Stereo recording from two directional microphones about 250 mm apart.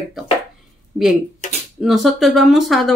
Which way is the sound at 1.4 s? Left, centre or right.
Left.